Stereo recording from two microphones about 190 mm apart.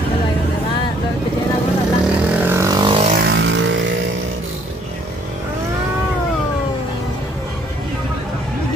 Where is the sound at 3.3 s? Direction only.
70° right (ahead or behind).